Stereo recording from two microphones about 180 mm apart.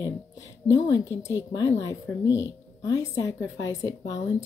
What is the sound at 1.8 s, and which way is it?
Speech, 90° left.